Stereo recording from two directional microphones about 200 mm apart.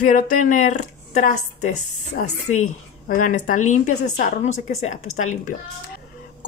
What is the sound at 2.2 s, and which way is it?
A woman's voice, 45° left (ahead or behind).